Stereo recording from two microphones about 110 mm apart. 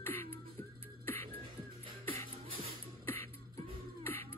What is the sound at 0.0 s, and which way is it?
Beatboxing, 20° left (ahead or behind).